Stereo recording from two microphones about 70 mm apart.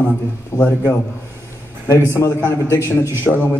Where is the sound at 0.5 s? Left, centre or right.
Left.